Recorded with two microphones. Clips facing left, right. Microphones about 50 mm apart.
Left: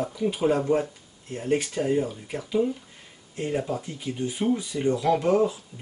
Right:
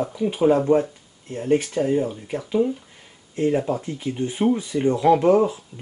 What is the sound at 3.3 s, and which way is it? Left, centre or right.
Speech, right.